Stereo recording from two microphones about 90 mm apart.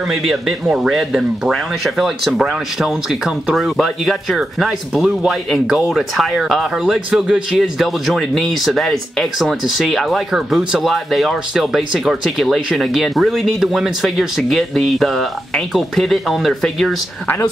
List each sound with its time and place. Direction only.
0.1 s speech: centre (ahead or behind)